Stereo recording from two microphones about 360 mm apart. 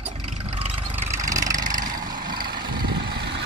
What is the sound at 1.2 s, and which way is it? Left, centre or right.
Vehicle, centre.